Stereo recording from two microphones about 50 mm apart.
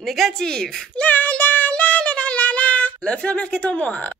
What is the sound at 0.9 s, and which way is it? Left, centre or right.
Child singing, left.